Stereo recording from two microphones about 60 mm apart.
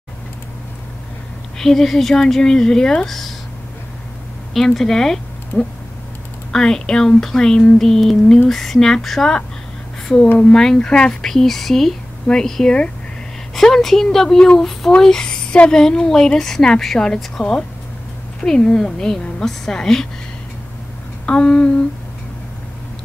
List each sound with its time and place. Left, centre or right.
1.6 s speech: centre
4.6 s speech: centre
5.5 s a sound: left
6.5 s speech: centre
10.4 s speech: centre
21.3 s speech: centre